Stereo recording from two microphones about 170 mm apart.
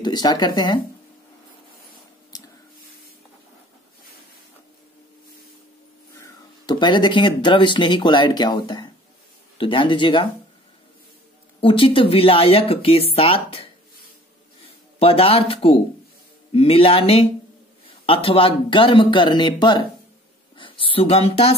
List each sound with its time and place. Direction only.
0.0 s speech: 25° left (ahead or behind)
6.2 s speech: 25° left (ahead or behind)
11.6 s speech: 30° left (ahead or behind)
15.0 s speech: 35° left (ahead or behind)